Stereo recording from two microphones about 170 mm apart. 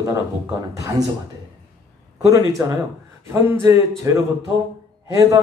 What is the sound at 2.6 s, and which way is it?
A man's voice, 15° right (ahead or behind).